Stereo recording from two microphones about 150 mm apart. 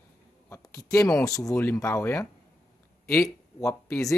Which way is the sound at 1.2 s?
20° left (ahead or behind).